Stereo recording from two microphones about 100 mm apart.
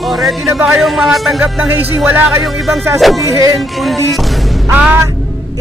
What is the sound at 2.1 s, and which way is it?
Music, 25° right (ahead or behind).